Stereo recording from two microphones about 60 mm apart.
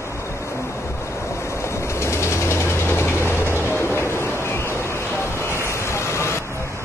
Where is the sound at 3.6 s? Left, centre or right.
Left.